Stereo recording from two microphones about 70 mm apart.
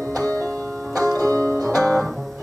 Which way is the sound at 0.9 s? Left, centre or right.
Right.